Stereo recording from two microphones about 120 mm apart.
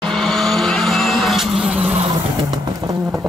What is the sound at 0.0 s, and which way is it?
Vehicle, 5° left (ahead or behind).